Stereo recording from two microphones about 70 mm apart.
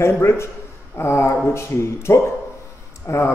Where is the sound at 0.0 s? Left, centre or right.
Left.